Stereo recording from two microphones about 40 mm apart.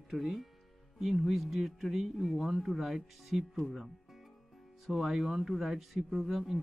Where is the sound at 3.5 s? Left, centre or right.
Centre.